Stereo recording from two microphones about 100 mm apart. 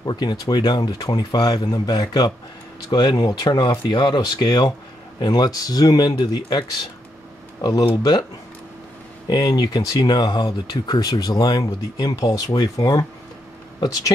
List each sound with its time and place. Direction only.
0.0 s speech: 45° left (ahead or behind)
7.6 s speech: 45° left (ahead or behind)
9.3 s speech: 40° left (ahead or behind)